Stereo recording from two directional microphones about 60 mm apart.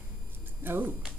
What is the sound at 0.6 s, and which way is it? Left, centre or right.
Speech, right.